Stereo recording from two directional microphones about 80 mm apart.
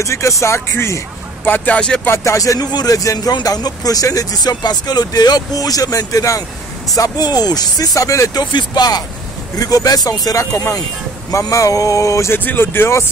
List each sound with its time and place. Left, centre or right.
0.0 s speech: left
1.4 s speech: left
2.0 s speech: left
7.0 s speech: left
8.4 s speech: left
9.6 s speech: left
12.4 s speech: left